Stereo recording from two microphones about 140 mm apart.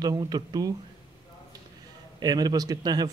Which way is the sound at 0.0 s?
30° right (ahead or behind).